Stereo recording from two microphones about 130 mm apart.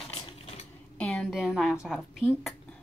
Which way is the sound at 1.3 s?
Centre (ahead or behind).